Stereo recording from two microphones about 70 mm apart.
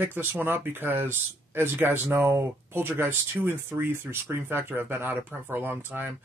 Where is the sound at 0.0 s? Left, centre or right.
Right.